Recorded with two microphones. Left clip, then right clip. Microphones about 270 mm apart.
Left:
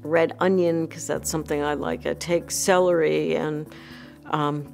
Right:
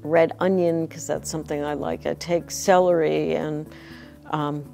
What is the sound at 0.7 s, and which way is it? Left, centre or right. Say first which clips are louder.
Speech: even; right.